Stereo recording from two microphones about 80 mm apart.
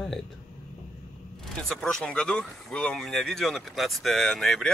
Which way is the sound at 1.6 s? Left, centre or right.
Centre.